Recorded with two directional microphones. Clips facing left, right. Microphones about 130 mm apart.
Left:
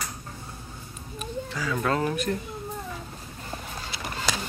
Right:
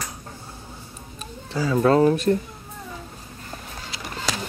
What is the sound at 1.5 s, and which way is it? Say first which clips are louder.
Speech: right 9 dB; 30° right (ahead or behind).